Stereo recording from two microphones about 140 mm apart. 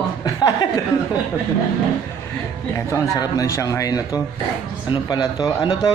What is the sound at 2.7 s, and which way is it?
A man's voice, 20° left (ahead or behind).